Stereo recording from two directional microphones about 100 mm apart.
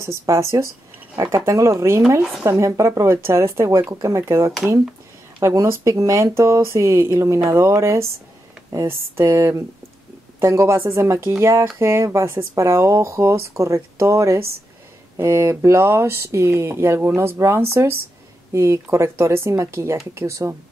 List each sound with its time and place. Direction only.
0.0 s speech: 30° right (ahead or behind)